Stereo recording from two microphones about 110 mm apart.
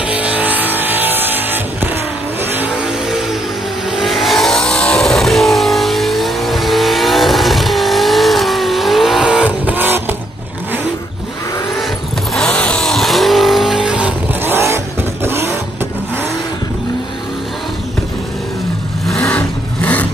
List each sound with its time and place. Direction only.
0.0 s music: 10° right (ahead or behind)
2.5 s vehicle: 15° right (ahead or behind)
3.9 s vehicle: centre (ahead or behind); by 10.1 s 20° right (ahead or behind)
12.4 s vehicle: 10° left (ahead or behind); by 14.1 s 10° right (ahead or behind)
14.4 s vehicle: 20° right (ahead or behind)
19.3 s vehicle: 15° left (ahead or behind)